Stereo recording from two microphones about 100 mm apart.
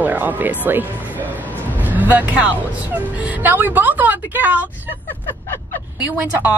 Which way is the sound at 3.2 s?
20° right (ahead or behind).